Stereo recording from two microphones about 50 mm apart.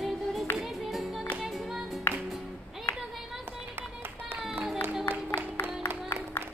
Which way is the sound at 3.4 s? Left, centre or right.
Right.